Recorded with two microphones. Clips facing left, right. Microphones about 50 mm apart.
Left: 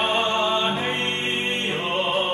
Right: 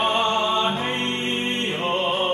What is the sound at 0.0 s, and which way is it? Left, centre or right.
Music, left.